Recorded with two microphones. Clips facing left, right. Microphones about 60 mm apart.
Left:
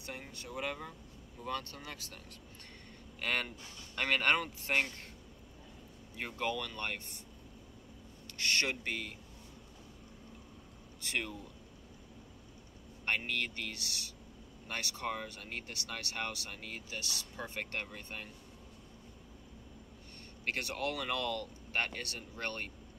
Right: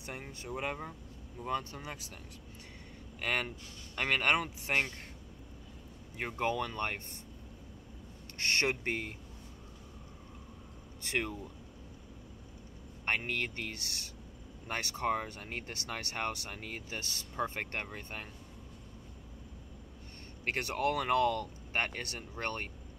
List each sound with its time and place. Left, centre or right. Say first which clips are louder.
0.0 s speech: right 2 dB; centre
3.2 s speech: right 1 dB; centre
6.1 s speech: right 3 dB; right
8.4 s speech: right 2 dB; right
11.0 s speech: right 3 dB; right
13.0 s speech: right 1 dB; right
20.4 s speech: right 4 dB; right